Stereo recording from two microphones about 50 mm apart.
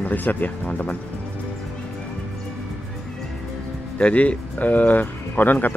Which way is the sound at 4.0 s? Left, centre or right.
Left.